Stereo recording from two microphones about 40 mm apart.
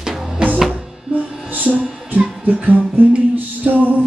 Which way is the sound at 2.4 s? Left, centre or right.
Right.